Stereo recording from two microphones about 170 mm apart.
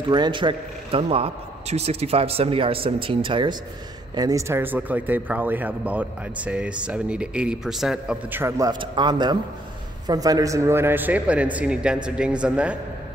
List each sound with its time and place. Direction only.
0.1 s a man's voice: 25° right (ahead or behind); by 12.7 s 5° right (ahead or behind)